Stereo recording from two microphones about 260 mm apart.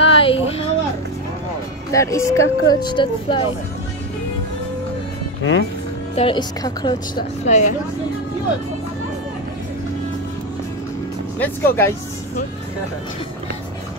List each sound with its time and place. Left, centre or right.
0.1 s a sound: left
1.9 s speech: centre
5.4 s speech: left
6.1 s a woman's voice: centre
11.3 s speech: centre